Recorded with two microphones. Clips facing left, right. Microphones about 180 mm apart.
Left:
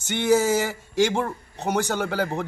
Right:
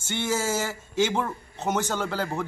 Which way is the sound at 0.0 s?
15° left (ahead or behind).